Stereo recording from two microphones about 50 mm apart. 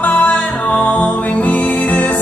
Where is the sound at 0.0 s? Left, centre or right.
Left.